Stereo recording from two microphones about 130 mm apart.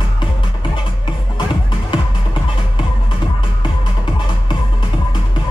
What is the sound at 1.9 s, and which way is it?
Music, 40° left (ahead or behind).